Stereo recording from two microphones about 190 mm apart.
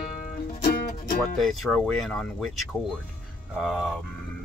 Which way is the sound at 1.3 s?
Centre (ahead or behind).